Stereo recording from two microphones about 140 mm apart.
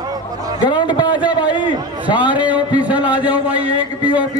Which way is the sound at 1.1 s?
10° right (ahead or behind).